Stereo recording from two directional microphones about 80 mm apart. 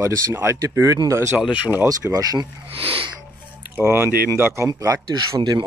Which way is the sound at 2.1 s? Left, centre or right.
Right.